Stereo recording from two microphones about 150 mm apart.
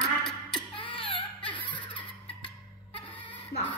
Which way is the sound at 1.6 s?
35° left (ahead or behind).